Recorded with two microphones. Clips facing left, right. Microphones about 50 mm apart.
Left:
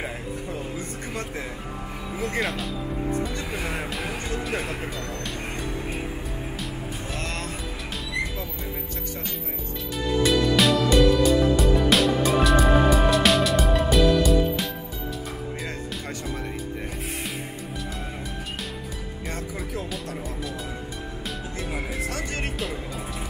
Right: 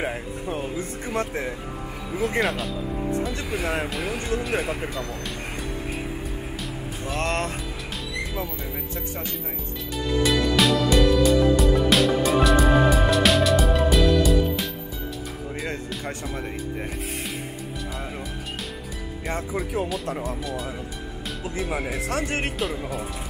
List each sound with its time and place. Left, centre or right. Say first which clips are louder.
1.1 s speech: right 7 dB; right
2.4 s speech: right 2 dB; centre
7.2 s music: right 9 dB; right
10.0 s music: left 1 dB; centre
20.2 s speech: right 3 dB; centre
22.0 s speech: right 4 dB; right
22.6 s speech: right 3 dB; centre